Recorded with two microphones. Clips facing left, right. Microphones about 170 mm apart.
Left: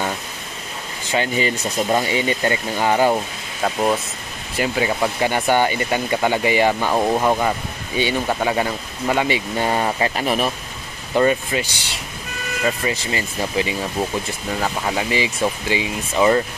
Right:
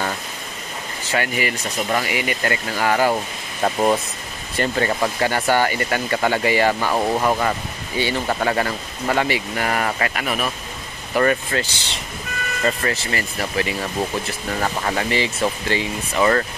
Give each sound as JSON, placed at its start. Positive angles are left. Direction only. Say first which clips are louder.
{"t": 1.0, "sound": "speech", "louder": "left 2 dB", "side_deg": 20}
{"t": 3.6, "sound": "speech", "louder": "right 1 dB", "side_deg": 0}
{"t": 11.1, "sound": "speech", "louder": "left 1 dB", "side_deg": 15}